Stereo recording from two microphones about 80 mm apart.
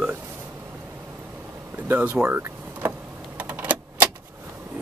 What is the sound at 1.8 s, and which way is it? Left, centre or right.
Speech, right.